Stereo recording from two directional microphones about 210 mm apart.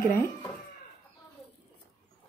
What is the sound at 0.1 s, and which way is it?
Speech, 10° left (ahead or behind).